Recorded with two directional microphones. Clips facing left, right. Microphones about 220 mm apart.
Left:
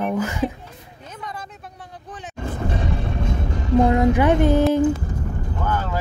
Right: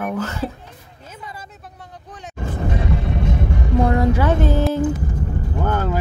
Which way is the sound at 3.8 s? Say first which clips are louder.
Left 1 dB; 15° left (ahead or behind).